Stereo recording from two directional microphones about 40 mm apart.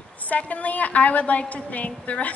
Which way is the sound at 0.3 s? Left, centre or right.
Left.